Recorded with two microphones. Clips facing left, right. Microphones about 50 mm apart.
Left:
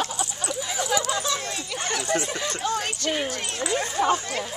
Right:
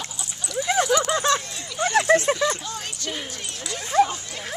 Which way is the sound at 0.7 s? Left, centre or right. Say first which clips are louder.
Right 6 dB; right.